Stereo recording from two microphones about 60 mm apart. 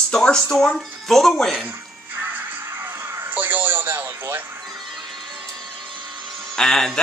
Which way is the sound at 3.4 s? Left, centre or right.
Right.